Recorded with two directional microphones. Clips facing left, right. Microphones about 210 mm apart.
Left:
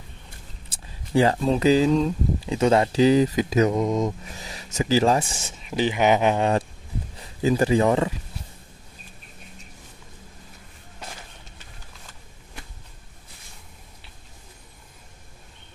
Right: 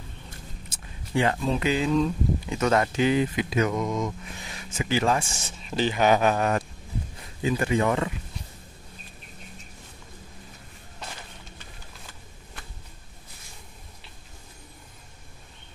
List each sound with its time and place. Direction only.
0.7 s speech: 30° left (ahead or behind)
5.6 s speech: 15° left (ahead or behind)